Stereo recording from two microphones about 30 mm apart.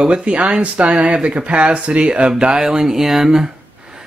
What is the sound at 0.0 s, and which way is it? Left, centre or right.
Speech, right.